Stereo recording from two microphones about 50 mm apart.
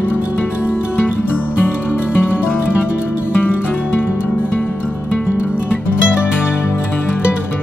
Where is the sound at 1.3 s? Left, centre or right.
Left.